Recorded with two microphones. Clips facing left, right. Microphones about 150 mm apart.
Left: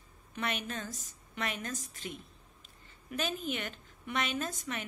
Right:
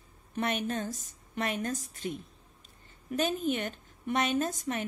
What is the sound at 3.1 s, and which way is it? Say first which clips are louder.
A woman's voice: right 6 dB; 45° right (ahead or behind).